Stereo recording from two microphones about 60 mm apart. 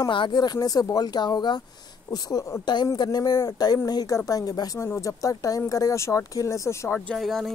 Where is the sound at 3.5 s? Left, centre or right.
Left.